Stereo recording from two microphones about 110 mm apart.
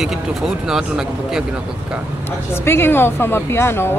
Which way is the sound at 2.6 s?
20° left (ahead or behind).